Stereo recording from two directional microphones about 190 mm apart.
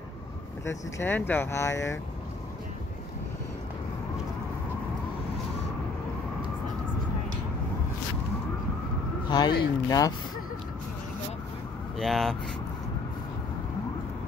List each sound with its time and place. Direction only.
0.7 s speech: 15° left (ahead or behind)
9.3 s speech: 20° left (ahead or behind)
12.0 s speech: centre (ahead or behind)